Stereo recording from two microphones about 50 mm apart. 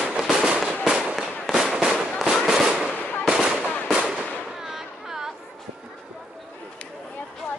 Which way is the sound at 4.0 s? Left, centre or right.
Centre.